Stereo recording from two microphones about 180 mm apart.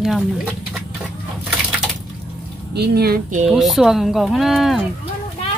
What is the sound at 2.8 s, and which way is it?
Speech, 60° right (ahead or behind).